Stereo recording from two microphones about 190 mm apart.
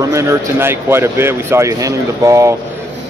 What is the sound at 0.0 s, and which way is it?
Speech, 15° right (ahead or behind).